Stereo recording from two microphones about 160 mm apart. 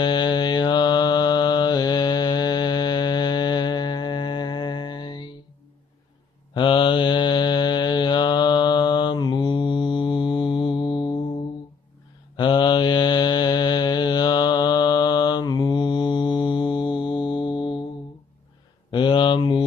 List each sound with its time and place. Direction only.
0.0 s mantra: 30° left (ahead or behind)
6.5 s mantra: 30° left (ahead or behind)
12.4 s mantra: 30° left (ahead or behind)
18.9 s a sound: 30° left (ahead or behind)